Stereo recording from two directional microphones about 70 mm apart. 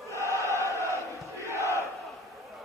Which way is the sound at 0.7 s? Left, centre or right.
Left.